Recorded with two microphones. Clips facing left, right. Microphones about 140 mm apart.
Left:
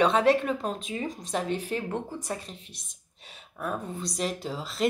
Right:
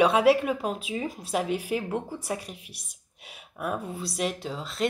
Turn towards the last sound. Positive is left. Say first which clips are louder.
# even
turn(degrees=0)  # may be behind; listen again after turning